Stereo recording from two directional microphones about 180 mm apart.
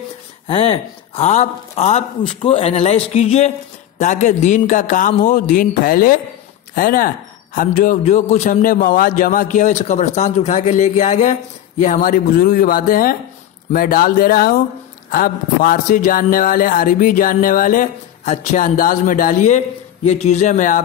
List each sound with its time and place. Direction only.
0.5 s speech: 30° left (ahead or behind)